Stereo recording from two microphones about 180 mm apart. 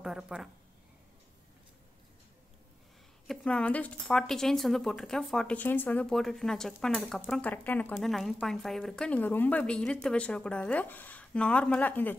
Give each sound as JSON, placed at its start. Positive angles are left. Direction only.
{"t": 0.0, "sound": "speech", "side_deg": -5}
{"t": 3.3, "sound": "a woman's voice", "side_deg": 5}